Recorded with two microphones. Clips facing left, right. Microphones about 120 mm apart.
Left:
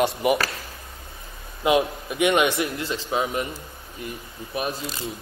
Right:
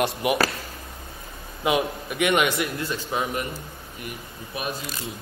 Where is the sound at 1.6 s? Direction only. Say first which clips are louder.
Left 3 dB; 25° left (ahead or behind).